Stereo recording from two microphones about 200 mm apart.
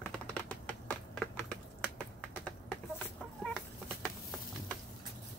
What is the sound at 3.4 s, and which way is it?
Chicken, 5° left (ahead or behind).